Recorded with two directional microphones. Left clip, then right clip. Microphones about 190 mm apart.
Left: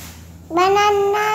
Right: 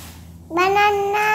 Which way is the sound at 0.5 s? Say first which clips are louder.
Left 2 dB; centre (ahead or behind).